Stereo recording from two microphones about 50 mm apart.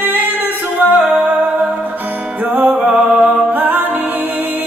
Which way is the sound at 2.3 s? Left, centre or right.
Right.